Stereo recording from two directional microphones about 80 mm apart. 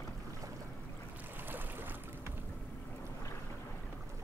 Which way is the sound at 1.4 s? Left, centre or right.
Right.